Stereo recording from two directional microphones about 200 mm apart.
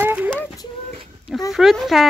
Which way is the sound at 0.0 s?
10° right (ahead or behind).